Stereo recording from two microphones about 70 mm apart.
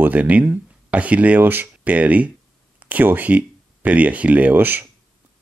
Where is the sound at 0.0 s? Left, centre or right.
Right.